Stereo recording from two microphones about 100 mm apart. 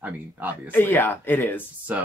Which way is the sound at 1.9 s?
15° right (ahead or behind).